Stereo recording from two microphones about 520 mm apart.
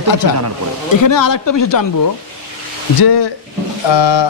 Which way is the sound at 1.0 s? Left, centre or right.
Left.